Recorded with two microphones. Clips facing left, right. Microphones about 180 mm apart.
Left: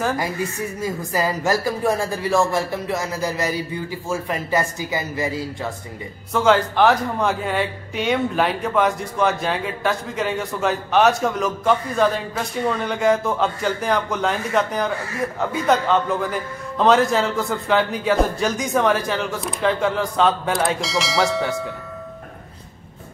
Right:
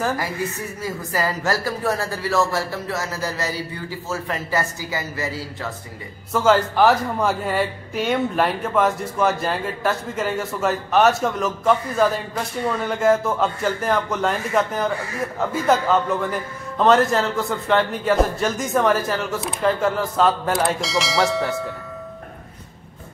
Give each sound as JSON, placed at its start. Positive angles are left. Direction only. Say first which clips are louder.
{"t": 0.8, "sound": "a man's voice", "louder": "left 1 dB", "side_deg": 20}
{"t": 6.3, "sound": "a man's voice", "louder": "even", "side_deg": -5}